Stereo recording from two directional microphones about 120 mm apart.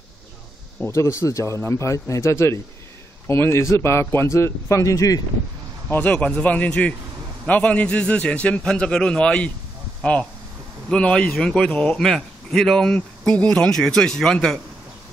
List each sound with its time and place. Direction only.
0.8 s a man's voice: 25° left (ahead or behind)
5.9 s a man's voice: 15° left (ahead or behind)